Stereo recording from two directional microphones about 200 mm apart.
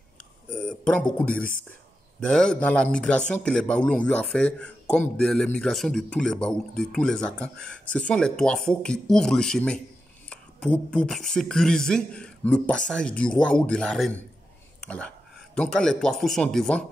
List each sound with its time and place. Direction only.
0.5 s speech: 5° left (ahead or behind)